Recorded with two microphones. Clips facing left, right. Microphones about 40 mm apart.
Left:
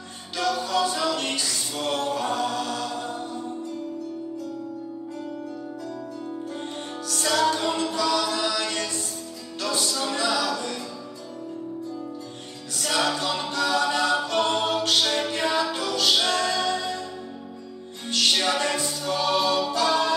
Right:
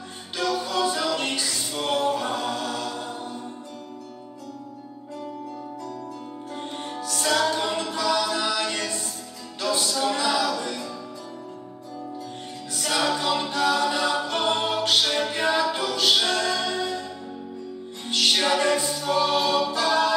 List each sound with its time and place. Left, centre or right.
0.4 s music: centre
2.3 s chant: centre
7.1 s music: centre
10.1 s a capella: centre
12.7 s music: centre
13.1 s a capella: centre
16.4 s music: centre
18.1 s music: centre
18.8 s choir: centre